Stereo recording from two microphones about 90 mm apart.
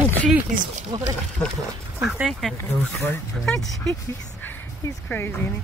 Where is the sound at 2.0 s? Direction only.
10° right (ahead or behind).